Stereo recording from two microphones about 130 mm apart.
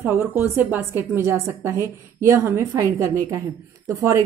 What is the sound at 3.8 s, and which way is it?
Speech, 25° right (ahead or behind).